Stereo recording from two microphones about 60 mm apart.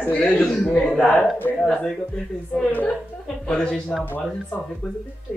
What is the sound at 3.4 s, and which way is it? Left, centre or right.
Speech, centre.